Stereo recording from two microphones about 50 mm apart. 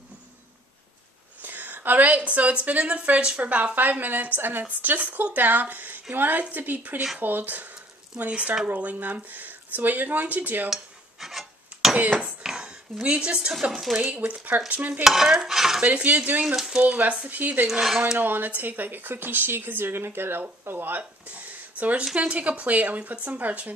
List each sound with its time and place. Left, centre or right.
1.4 s a woman's voice: right
4.6 s a woman's voice: right
8.6 s a woman's voice: right
10.7 s cutlery: centre
11.9 s speech: right
12.4 s speech: centre
14.0 s a woman's voice: right
15.0 s cutlery: centre
15.8 s a woman's voice: right
17.3 s a woman's voice: right
17.6 s speech: centre
18.2 s a woman's voice: right
21.3 s a sound: right
22.1 s a woman's voice: right